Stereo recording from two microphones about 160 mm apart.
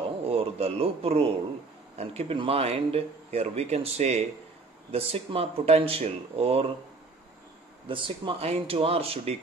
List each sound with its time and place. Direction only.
0.3 s a man's voice: 40° right (ahead or behind)
7.9 s a man's voice: 35° right (ahead or behind)